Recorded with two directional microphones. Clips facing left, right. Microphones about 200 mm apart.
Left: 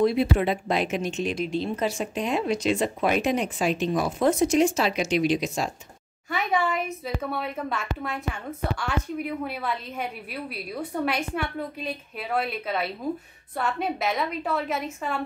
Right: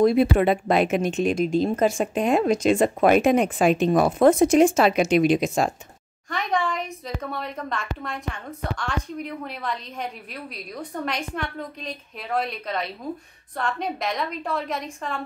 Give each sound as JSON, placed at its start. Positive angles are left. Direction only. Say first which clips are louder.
{"t": 0.0, "sound": "speech", "louder": "right 4 dB", "side_deg": -50}
{"t": 6.3, "sound": "a woman's voice", "louder": "even", "side_deg": 5}